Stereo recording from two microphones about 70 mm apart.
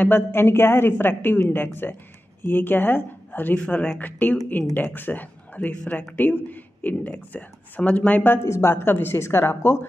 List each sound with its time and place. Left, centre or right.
0.0 s speech: left